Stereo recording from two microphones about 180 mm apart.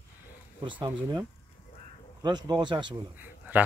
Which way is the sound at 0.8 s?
20° right (ahead or behind).